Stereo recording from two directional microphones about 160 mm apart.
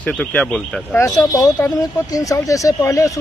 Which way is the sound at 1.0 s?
20° left (ahead or behind).